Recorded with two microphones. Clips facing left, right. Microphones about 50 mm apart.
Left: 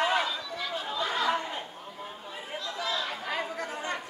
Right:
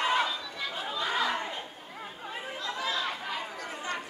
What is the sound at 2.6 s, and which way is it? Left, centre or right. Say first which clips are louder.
Chatter: right 1 dB; centre.